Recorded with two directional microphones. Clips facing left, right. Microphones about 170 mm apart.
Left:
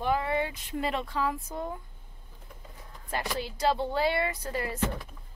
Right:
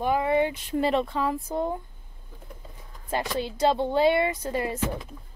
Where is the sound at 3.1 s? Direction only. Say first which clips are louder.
Right 5 dB; 20° right (ahead or behind).